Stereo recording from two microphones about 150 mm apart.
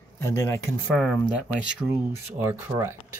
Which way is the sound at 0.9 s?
5° left (ahead or behind).